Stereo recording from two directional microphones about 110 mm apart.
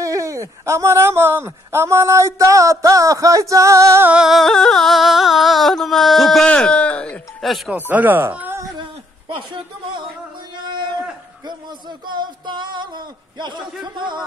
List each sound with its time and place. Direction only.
0.0 s speech: 30° right (ahead or behind)
4.1 s music: 5° right (ahead or behind); by 7.2 s 10° left (ahead or behind)
7.4 s music: centre (ahead or behind)
7.7 s speech: 15° right (ahead or behind)
9.3 s a sound: 45° right (ahead or behind)
12.1 s a sound: 45° right (ahead or behind)
13.9 s a man's voice: 45° right (ahead or behind)